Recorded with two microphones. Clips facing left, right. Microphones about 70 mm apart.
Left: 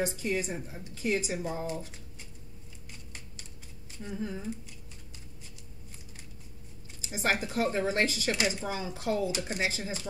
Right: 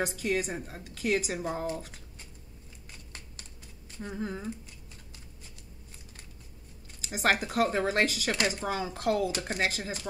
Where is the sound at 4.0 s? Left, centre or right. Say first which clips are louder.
Right 1 dB; right.